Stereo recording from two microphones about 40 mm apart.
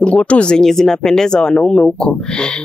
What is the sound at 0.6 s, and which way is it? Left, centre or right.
Speech, centre.